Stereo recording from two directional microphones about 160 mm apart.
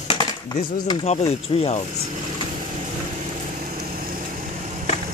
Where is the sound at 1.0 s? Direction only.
40° left (ahead or behind).